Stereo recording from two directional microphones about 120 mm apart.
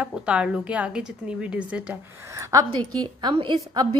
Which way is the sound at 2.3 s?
25° right (ahead or behind).